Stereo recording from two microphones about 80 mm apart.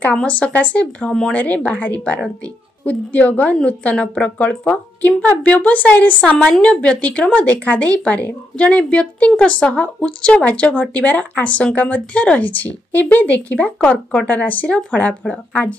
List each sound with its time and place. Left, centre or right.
0.1 s a woman's voice: centre